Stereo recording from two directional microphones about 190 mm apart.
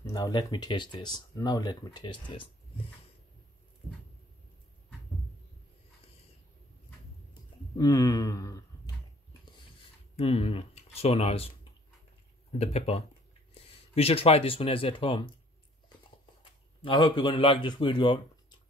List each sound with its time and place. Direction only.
0.0 s speech: 20° left (ahead or behind)
7.7 s a sound: 20° left (ahead or behind)
9.8 s speech: 30° left (ahead or behind)
12.5 s speech: 35° left (ahead or behind)
16.8 s speech: 25° left (ahead or behind)